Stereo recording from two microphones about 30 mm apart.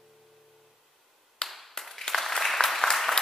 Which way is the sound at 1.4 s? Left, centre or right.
Left.